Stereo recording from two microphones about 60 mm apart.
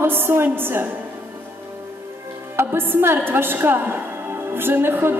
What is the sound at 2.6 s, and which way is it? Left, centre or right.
A woman's voice, right.